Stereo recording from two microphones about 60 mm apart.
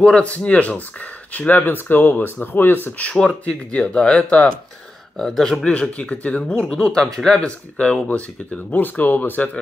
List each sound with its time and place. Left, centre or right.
0.0 s speech: left
3.0 s speech: centre
5.7 s speech: left
8.7 s speech: left